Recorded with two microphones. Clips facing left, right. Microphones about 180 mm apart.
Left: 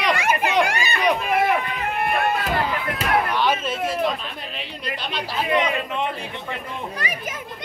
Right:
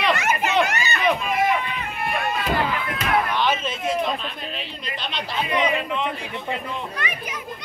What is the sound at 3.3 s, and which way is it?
Slam, 10° left (ahead or behind).